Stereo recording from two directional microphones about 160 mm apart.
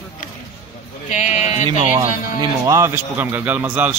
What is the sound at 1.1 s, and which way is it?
Speech, 45° left (ahead or behind).